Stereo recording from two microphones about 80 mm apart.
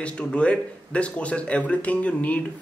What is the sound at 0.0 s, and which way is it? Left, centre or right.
Speech, centre.